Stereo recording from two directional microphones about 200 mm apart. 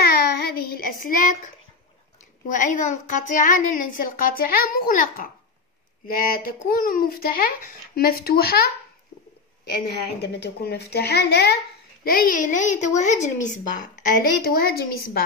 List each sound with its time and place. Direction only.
0.1 s child singing: 50° left (ahead or behind)
2.5 s a child's voice: 40° left (ahead or behind)
9.7 s a child's voice: 55° left (ahead or behind)